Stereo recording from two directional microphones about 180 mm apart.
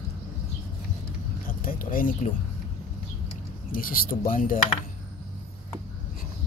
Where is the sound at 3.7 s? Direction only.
50° left (ahead or behind).